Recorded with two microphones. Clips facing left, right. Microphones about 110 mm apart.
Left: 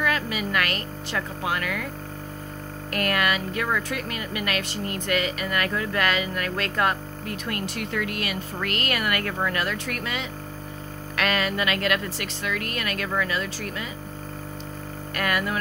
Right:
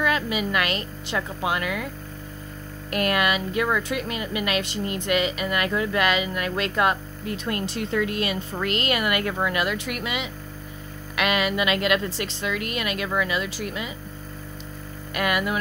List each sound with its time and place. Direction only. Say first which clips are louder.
0.0 s a woman's voice: right 2 dB; 20° right (ahead or behind)
2.9 s speech: right 2 dB; 20° right (ahead or behind)
15.1 s speech: right 2 dB; 15° right (ahead or behind)